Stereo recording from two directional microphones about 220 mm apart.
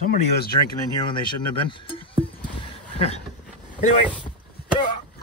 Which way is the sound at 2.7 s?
30° left (ahead or behind).